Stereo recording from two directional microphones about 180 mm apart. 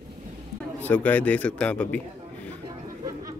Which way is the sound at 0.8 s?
10° left (ahead or behind).